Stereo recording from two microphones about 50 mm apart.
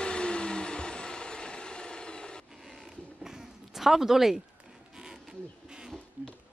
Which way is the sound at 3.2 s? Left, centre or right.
Centre.